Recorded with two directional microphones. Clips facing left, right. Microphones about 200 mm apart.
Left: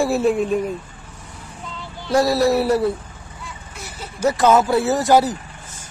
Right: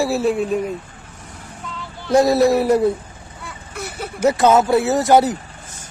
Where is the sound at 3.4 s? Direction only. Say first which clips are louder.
Right 6 dB; 60° right (ahead or behind).